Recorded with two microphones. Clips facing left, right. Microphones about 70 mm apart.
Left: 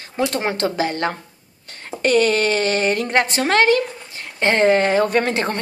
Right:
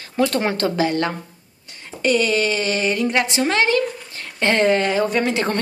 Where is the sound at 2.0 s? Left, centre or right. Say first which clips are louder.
Left 2 dB; left.